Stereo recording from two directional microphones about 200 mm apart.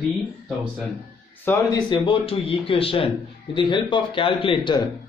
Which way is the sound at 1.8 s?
25° left (ahead or behind).